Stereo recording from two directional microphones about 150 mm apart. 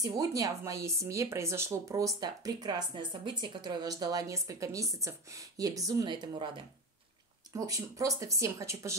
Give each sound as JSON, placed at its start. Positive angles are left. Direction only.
{"t": 0.0, "sound": "speech", "side_deg": -25}
{"t": 7.5, "sound": "speech", "side_deg": -20}